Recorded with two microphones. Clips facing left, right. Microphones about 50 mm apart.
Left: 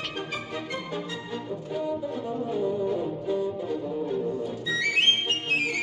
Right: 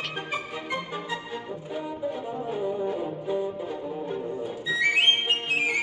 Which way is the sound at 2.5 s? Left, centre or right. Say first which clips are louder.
Left 1 dB; centre.